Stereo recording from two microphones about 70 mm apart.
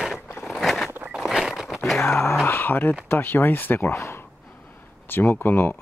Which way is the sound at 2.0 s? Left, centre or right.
Left.